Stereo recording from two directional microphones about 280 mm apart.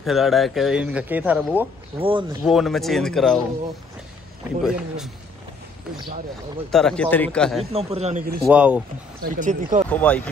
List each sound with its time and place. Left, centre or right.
0.0 s speech: centre
2.0 s a man's voice: centre
2.4 s speech: centre
4.6 s speech: centre
6.7 s speech: centre
7.7 s a man's voice: right
8.5 s speech: centre
9.2 s a man's voice: right
9.8 s speech: centre